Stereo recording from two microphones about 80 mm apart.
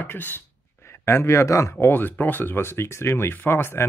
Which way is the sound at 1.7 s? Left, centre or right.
Left.